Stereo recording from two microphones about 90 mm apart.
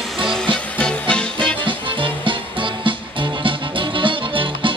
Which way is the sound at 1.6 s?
65° right (ahead or behind).